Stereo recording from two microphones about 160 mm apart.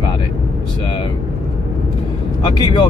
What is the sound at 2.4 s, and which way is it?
Speech, 25° left (ahead or behind).